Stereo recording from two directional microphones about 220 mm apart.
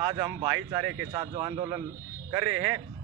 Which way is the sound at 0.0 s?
20° right (ahead or behind).